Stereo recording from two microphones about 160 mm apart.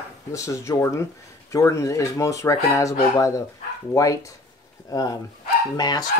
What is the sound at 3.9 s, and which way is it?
Speech, 20° left (ahead or behind).